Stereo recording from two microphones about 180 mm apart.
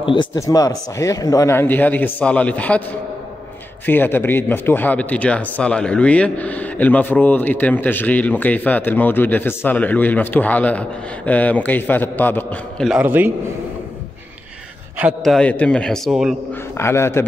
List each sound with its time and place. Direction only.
0.0 s a man's voice: 30° left (ahead or behind); by 2.8 s 5° left (ahead or behind)
3.8 s a man's voice: 10° left (ahead or behind)
12.9 s a man's voice: 10° right (ahead or behind)
15.0 s a man's voice: 5° right (ahead or behind)
16.7 s a man's voice: 15° left (ahead or behind)